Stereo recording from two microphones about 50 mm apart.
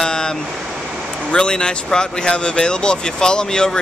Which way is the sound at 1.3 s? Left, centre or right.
Centre.